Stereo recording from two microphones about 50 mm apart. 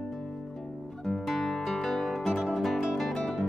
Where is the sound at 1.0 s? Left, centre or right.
Centre.